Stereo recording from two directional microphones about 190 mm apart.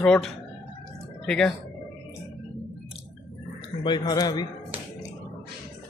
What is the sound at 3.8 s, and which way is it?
Speech, 20° left (ahead or behind).